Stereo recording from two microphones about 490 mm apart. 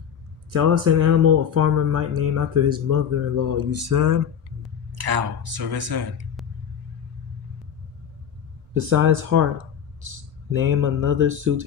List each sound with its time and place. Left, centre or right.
0.5 s speech: right
4.9 s speech: right
8.7 s speech: right
10.6 s speech: right